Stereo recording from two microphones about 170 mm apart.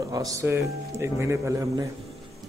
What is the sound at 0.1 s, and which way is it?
Speech, 20° right (ahead or behind).